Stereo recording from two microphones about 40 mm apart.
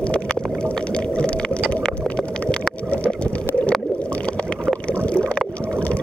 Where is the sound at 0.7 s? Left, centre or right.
Left.